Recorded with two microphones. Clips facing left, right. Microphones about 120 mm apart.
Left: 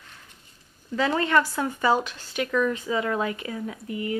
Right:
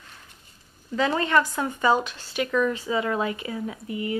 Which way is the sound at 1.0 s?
25° right (ahead or behind).